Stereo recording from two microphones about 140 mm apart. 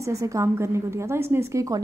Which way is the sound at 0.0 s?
20° right (ahead or behind).